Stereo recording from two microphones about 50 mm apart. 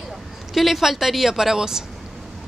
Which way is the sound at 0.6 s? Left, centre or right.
Centre.